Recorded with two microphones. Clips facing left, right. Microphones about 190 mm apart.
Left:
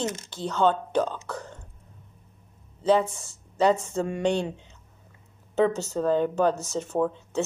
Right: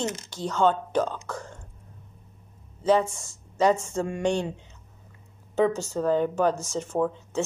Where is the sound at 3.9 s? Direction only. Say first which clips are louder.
Left 1 dB; 20° left (ahead or behind).